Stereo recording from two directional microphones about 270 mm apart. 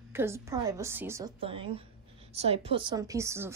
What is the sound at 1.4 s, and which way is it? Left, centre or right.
A woman's voice, right.